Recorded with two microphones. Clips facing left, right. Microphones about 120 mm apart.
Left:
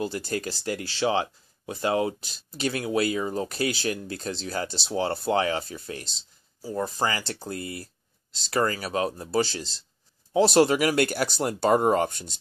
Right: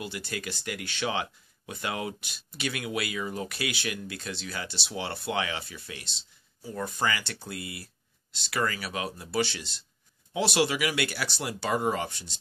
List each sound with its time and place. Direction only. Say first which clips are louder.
0.0 s speech: left 7 dB; 40° left (ahead or behind)